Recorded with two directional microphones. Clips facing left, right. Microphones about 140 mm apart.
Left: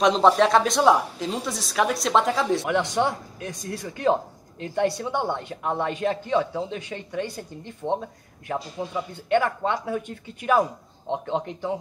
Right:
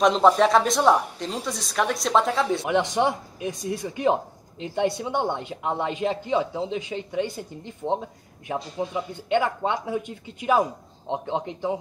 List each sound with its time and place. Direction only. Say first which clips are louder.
0.0 s a woman's voice: even; centre (ahead or behind)
2.6 s speech: right 1 dB; 15° right (ahead or behind)